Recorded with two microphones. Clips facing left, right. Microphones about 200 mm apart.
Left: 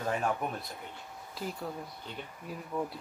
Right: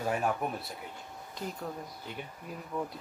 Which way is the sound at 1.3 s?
5° left (ahead or behind).